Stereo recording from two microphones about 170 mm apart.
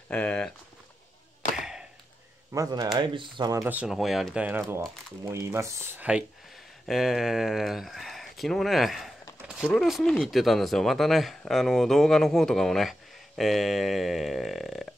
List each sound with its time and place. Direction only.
0.1 s speech: 5° left (ahead or behind)
1.5 s arrow: centre (ahead or behind)
2.5 s speech: 20° right (ahead or behind)
3.6 s speech: 5° right (ahead or behind)